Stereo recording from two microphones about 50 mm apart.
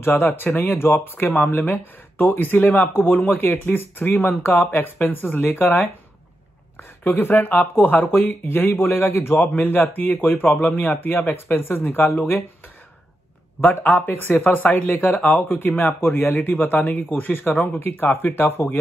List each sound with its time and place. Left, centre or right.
0.0 s speech: left
7.1 s speech: left
13.6 s speech: left